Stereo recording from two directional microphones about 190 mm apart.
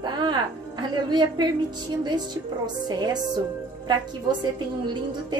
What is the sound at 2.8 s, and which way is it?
Speech, 20° right (ahead or behind).